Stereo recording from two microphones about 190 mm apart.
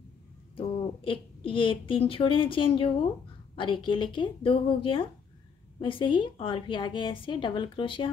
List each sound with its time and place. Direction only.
0.6 s speech: 30° left (ahead or behind)